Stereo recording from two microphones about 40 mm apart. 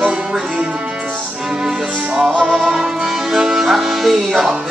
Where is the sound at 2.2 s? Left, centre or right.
Right.